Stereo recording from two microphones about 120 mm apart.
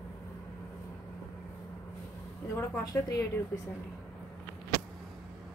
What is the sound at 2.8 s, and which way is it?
Speech, 30° left (ahead or behind).